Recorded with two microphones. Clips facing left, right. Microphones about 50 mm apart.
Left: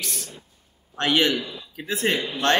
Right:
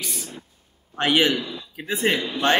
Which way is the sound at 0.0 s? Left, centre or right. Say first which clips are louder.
Right 1 dB; centre.